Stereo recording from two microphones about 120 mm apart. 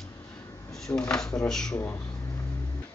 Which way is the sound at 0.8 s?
5° left (ahead or behind).